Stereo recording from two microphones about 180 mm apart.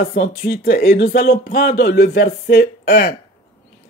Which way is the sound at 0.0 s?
60° left (ahead or behind).